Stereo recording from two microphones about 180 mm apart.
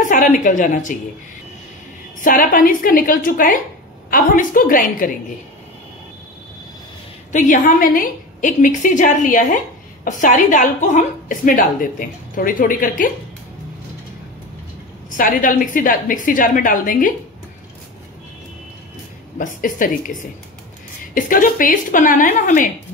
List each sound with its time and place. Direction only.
0.0 s a woman's voice: 45° left (ahead or behind)
2.1 s a woman's voice: 50° left (ahead or behind)
7.3 s a woman's voice: 45° left (ahead or behind)
15.0 s a woman's voice: 50° left (ahead or behind)
19.3 s a woman's voice: 45° left (ahead or behind)
21.1 s a woman's voice: 50° left (ahead or behind)